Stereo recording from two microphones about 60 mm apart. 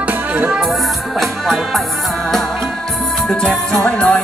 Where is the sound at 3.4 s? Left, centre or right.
Centre.